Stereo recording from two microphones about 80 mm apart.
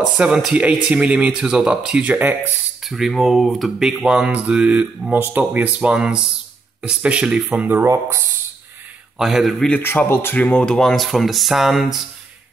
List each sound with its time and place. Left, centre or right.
0.2 s speech: centre
2.8 s speech: centre
5.1 s speech: right
7.4 s speech: right
7.8 s speech: right
9.2 s speech: centre
9.8 s speech: left
10.4 s speech: centre